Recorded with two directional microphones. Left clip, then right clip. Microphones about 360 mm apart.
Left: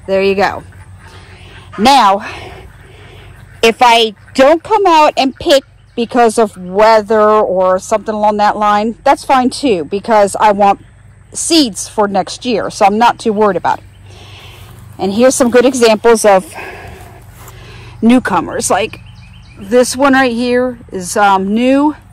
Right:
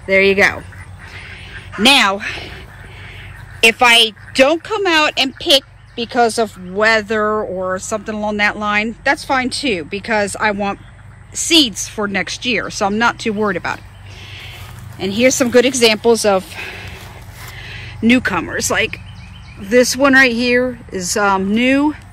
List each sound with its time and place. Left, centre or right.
0.0 s a woman's voice: centre
1.1 s dog: centre
1.9 s speech: centre
3.6 s a woman's voice: centre
11.3 s a woman's voice: centre
15.0 s a woman's voice: centre